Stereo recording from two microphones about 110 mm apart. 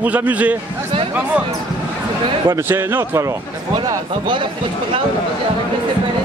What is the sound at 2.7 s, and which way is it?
Speech, 20° right (ahead or behind).